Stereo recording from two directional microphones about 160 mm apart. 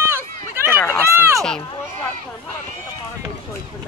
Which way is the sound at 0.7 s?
15° left (ahead or behind).